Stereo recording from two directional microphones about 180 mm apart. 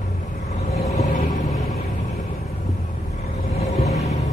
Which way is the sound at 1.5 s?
Centre (ahead or behind).